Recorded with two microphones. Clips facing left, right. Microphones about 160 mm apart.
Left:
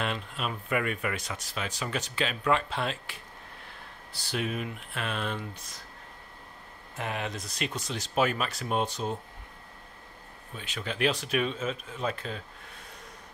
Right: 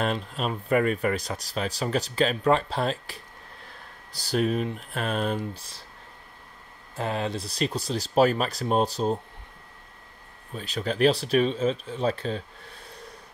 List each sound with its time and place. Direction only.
0.0 s speech: 40° right (ahead or behind)
7.0 s speech: 30° right (ahead or behind)
10.5 s speech: 35° right (ahead or behind)